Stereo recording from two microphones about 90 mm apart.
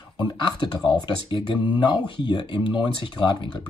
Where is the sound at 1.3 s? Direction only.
60° left (ahead or behind).